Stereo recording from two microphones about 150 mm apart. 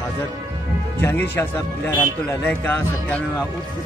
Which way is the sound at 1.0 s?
15° left (ahead or behind).